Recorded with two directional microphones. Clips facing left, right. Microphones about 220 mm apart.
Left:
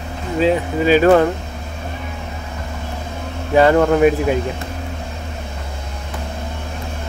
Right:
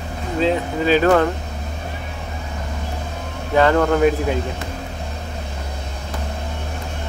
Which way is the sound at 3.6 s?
15° left (ahead or behind).